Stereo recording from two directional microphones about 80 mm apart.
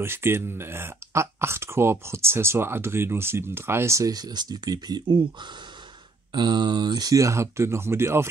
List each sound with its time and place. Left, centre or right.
0.0 s speech: right